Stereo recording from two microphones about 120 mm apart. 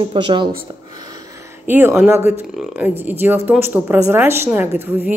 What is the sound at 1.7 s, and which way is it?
A woman's voice, 15° right (ahead or behind).